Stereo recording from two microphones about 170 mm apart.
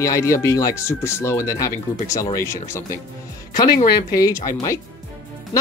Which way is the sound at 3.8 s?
20° left (ahead or behind).